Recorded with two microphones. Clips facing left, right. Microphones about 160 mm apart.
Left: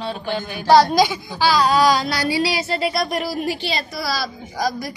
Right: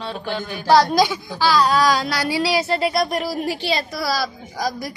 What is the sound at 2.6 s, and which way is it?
Speech, 55° right (ahead or behind).